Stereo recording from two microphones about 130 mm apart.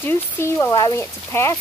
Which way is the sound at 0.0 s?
20° left (ahead or behind).